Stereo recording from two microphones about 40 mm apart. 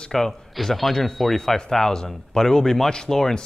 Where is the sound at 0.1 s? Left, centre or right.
Centre.